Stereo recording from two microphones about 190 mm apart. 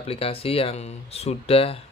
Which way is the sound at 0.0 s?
30° left (ahead or behind).